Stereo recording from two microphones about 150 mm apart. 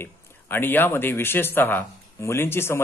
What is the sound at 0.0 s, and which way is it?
Speech, 15° left (ahead or behind).